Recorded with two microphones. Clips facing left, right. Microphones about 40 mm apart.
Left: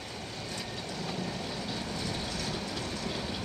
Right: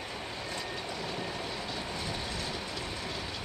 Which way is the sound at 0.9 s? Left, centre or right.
Centre.